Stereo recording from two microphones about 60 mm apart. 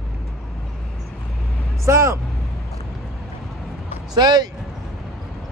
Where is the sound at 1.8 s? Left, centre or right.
Right.